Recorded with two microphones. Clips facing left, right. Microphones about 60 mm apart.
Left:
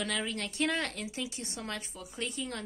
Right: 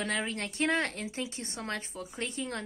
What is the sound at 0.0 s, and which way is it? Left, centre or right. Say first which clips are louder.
A woman's voice: right 2 dB; right.